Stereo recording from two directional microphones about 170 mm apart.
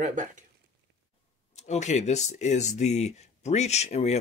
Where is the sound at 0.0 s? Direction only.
50° right (ahead or behind).